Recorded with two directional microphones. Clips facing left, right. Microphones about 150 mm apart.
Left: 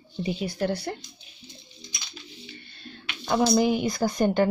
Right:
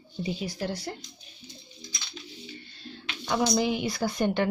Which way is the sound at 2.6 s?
60° left (ahead or behind).